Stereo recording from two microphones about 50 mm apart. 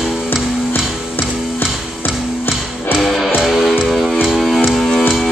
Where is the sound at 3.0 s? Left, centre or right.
Centre.